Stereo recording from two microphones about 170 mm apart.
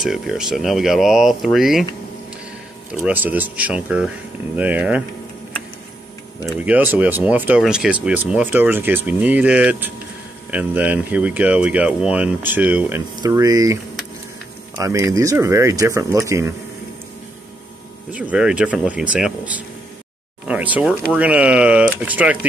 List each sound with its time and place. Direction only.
0.0 s speech: 5° right (ahead or behind)
2.9 s speech: 10° right (ahead or behind)
6.4 s speech: 10° right (ahead or behind)
13.2 s speech: 20° right (ahead or behind)
14.8 s speech: 20° right (ahead or behind)
18.1 s speech: 5° right (ahead or behind)
20.4 s a sound: 10° right (ahead or behind)
21.1 s speech: 10° right (ahead or behind)